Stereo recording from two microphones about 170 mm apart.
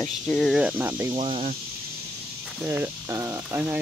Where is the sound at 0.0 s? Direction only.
5° left (ahead or behind); by 1.1 s 10° right (ahead or behind).